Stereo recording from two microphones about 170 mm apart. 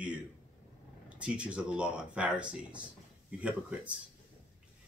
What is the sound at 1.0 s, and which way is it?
Speech, 5° right (ahead or behind).